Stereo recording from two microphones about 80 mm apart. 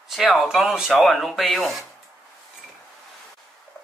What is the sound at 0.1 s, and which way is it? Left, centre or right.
Speech, centre.